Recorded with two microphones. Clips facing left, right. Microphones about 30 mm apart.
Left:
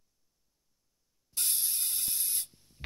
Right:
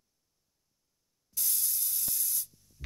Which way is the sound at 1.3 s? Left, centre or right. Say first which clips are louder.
Left 2 dB; left.